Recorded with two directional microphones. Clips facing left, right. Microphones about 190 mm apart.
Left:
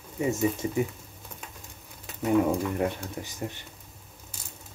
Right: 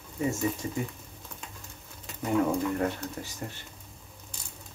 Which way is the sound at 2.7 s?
15° left (ahead or behind).